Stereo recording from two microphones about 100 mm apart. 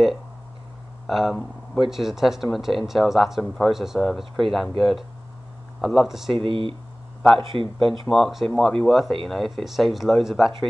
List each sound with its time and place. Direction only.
1.0 s speech: centre (ahead or behind)
6.3 s speech: 60° right (ahead or behind)
8.1 s speech: centre (ahead or behind)